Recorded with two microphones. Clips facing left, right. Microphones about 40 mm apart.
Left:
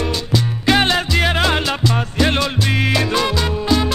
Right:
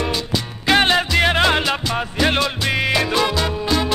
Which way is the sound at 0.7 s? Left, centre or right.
Centre.